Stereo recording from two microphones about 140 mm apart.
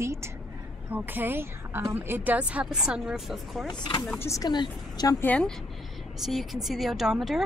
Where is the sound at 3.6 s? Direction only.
35° left (ahead or behind).